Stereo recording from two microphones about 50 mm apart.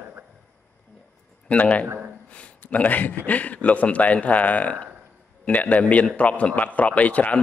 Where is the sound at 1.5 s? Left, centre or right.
Left.